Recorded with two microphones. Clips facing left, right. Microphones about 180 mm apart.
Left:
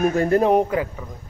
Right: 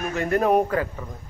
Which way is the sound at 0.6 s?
15° left (ahead or behind).